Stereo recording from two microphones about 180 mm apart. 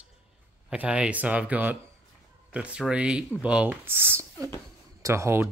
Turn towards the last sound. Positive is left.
turn(degrees=-15)  # may be behind; listen again after turning